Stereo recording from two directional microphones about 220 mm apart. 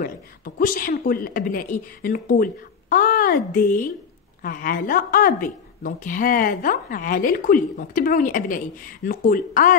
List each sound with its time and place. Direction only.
0.6 s a woman's voice: 40° left (ahead or behind)